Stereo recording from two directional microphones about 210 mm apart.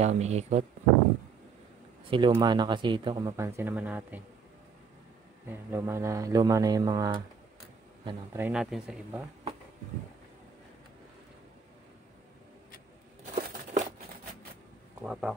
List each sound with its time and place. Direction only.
0.0 s speech: 30° right (ahead or behind)
2.0 s speech: 25° right (ahead or behind); by 4.2 s 10° right (ahead or behind)
5.5 s speech: 10° right (ahead or behind)
13.2 s a sound: 35° right (ahead or behind)
15.0 s speech: centre (ahead or behind)